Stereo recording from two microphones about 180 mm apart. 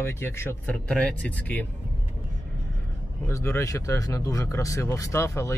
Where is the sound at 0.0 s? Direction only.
15° left (ahead or behind).